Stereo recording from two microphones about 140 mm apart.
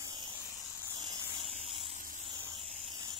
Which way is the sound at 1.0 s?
30° right (ahead or behind).